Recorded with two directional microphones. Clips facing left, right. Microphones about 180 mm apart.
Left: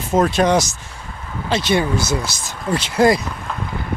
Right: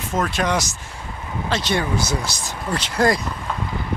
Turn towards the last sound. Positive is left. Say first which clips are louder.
# left 4 dB
turn(degrees=20)  # may be behind; listen again after turning